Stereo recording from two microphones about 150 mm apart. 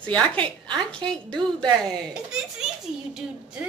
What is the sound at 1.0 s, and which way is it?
Speech, 30° right (ahead or behind).